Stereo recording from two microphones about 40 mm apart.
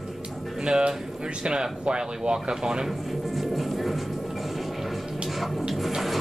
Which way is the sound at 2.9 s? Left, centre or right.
Centre.